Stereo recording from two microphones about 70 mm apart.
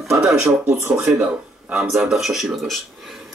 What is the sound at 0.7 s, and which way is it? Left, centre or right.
Speech, right.